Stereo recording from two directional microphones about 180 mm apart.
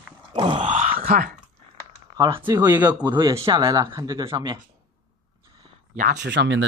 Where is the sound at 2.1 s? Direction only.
25° right (ahead or behind).